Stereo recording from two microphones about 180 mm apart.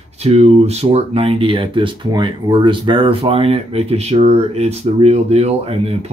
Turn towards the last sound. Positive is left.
turn(degrees=-35)  # may be behind; listen again after turning